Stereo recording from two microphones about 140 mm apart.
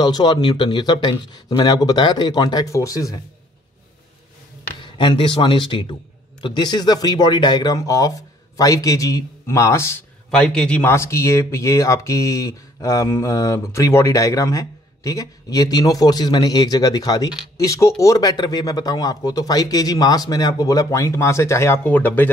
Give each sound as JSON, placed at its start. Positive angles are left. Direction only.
{"t": 0.0, "sound": "speech", "side_deg": 30}
{"t": 4.8, "sound": "speech", "side_deg": 35}
{"t": 10.3, "sound": "speech", "side_deg": 5}
{"t": 10.8, "sound": "speech", "side_deg": 20}